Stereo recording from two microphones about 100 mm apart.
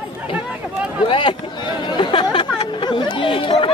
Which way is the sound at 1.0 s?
55° left (ahead or behind).